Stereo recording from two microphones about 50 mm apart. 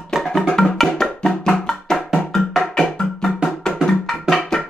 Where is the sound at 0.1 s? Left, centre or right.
Centre.